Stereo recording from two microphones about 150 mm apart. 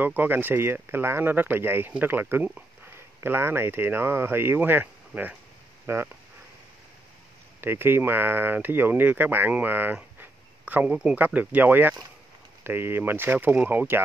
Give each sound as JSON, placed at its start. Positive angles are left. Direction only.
{"t": 0.0, "sound": "speech", "side_deg": -10}
{"t": 7.6, "sound": "speech", "side_deg": -15}